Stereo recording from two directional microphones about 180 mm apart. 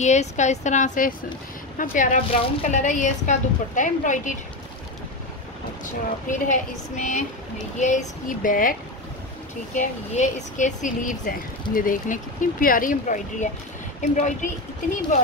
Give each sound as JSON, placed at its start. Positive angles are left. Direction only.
{"t": 0.0, "sound": "a woman's voice", "side_deg": 40}
{"t": 6.2, "sound": "speech", "side_deg": 45}
{"t": 9.8, "sound": "speech", "side_deg": 40}